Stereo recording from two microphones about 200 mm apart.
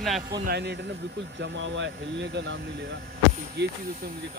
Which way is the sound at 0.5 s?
55° right (ahead or behind).